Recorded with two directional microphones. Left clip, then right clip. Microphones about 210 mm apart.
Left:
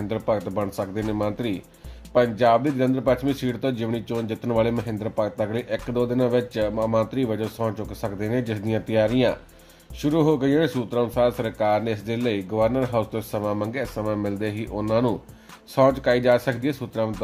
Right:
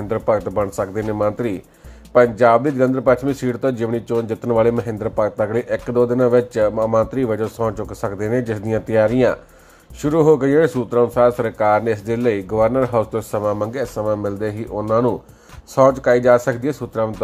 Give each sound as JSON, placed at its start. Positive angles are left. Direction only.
{"t": 0.5, "sound": "speech", "side_deg": -20}
{"t": 14.2, "sound": "speech", "side_deg": 0}
{"t": 16.0, "sound": "speech", "side_deg": -20}